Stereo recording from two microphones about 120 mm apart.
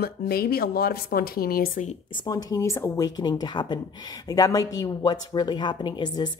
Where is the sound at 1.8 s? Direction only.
90° left.